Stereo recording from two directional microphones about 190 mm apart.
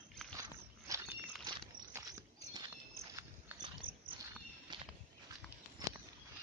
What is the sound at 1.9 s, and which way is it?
Walk, 15° right (ahead or behind).